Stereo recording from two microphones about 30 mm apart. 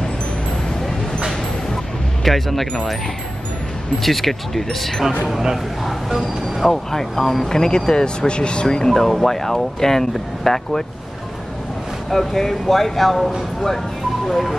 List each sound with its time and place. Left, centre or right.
2.2 s speech: centre
2.6 s speech: left
4.0 s speech: centre
6.0 s speech: centre
6.7 s speech: centre; by 8.6 s left
8.6 s speech: centre
12.1 s speech: centre